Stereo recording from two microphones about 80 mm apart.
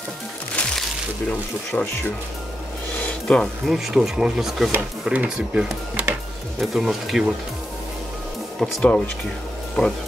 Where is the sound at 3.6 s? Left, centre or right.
Centre.